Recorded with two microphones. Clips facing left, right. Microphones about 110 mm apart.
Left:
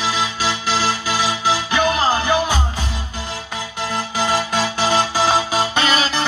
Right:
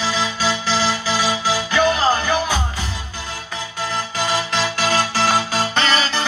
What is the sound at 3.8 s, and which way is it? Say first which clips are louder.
Music: left 2 dB; 15° left (ahead or behind).